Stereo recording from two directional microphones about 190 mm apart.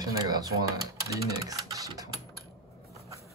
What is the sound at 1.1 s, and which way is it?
Speech, 20° right (ahead or behind).